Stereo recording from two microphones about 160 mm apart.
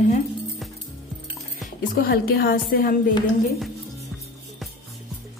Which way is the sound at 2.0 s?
70° left (ahead or behind).